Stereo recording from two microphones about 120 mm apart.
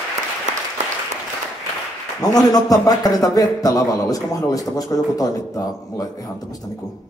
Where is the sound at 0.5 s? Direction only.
80° right.